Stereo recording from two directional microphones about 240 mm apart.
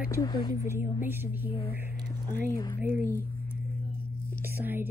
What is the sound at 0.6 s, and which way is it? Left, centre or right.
Speech, centre.